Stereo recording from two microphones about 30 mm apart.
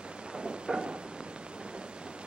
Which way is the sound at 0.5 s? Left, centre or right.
Right.